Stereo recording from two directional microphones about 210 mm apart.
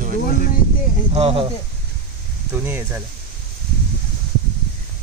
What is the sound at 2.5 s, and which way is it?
Speech, 10° right (ahead or behind).